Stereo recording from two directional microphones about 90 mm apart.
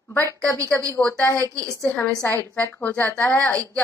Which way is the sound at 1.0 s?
15° left (ahead or behind).